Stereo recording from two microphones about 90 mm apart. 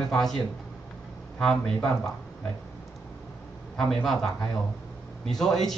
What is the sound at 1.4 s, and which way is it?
Speech, 5° left (ahead or behind).